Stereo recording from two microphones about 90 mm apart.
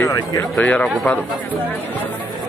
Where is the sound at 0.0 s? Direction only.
40° left (ahead or behind).